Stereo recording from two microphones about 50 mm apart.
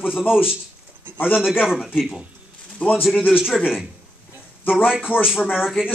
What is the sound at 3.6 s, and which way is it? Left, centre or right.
Speech, centre.